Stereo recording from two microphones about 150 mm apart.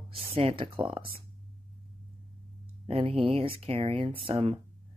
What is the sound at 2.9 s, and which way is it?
Speech, 35° right (ahead or behind).